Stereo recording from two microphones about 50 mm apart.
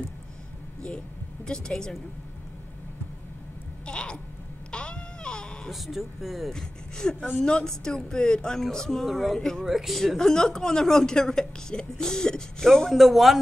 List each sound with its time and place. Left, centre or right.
0.8 s speech: centre
3.8 s a sound: centre
4.6 s baby cry: centre
5.7 s speech: centre
6.5 s a woman's voice: centre
9.4 s a woman's voice: centre
9.7 s a woman's voice: centre
12.9 s speech: centre